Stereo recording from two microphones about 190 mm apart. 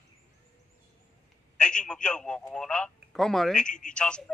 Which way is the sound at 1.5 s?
5° left (ahead or behind).